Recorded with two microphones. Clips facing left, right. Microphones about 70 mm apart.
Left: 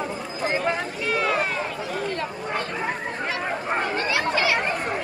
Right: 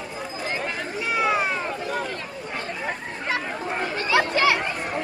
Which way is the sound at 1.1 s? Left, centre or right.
Centre.